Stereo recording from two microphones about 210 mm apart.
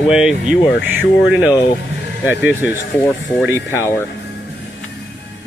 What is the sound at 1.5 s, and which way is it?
Speech, 20° left (ahead or behind).